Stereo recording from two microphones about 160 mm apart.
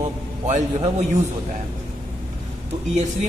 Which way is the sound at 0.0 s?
45° right (ahead or behind).